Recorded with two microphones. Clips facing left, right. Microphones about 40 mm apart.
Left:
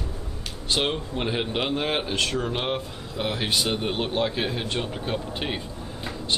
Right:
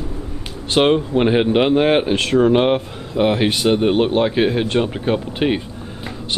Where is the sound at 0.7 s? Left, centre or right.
Right.